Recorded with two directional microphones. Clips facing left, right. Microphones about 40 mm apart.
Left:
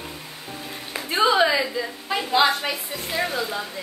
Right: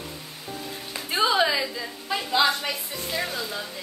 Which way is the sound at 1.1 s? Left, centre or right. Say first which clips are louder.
Left 3 dB; centre.